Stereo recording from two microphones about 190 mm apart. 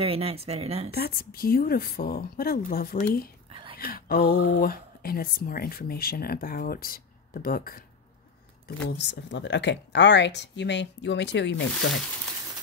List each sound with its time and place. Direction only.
0.0 s speech: 30° right (ahead or behind)
0.9 s speech: 55° left (ahead or behind)
3.4 s whispering: 30° right (ahead or behind)
3.7 s speech: 50° left (ahead or behind)
8.8 s speech: 65° left (ahead or behind)